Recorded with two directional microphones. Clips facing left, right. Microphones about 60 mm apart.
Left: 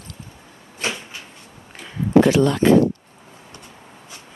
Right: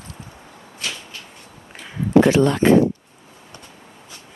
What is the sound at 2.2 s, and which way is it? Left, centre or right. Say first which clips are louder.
Speech: even; right.